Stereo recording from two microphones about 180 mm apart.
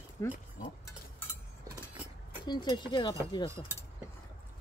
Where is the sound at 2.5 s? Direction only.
25° left (ahead or behind).